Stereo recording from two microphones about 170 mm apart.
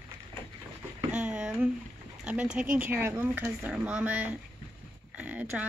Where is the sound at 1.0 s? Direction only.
5° right (ahead or behind).